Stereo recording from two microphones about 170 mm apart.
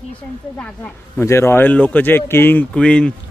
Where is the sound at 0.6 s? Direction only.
10° left (ahead or behind).